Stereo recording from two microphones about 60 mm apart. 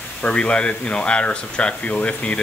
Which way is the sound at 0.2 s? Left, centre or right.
Centre.